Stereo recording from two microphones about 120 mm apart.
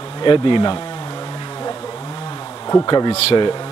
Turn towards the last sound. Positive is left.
turn(degrees=35)  # may be behind; listen again after turning